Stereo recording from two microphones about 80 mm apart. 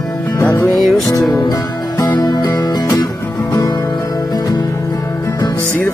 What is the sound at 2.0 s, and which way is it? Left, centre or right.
Music, left.